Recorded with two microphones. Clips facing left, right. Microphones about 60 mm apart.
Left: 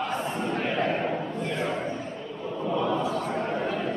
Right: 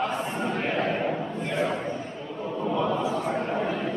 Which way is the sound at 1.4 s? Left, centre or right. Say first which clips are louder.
Right 4 dB; centre.